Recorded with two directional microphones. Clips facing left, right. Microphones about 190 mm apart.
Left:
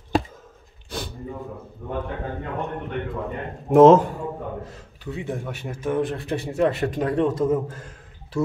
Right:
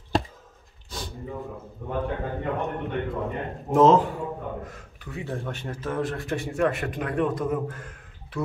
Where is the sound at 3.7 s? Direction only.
55° left (ahead or behind).